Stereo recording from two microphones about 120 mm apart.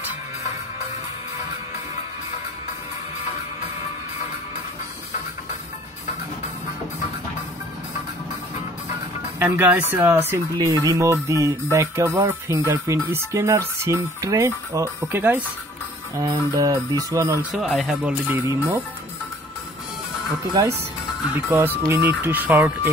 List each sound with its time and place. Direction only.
9.4 s speech: 15° right (ahead or behind)
10.6 s speech: 30° right (ahead or behind)
16.2 s speech: 30° right (ahead or behind)
17.5 s speech: centre (ahead or behind)
18.3 s speech: 20° right (ahead or behind)
21.5 s speech: 20° right (ahead or behind)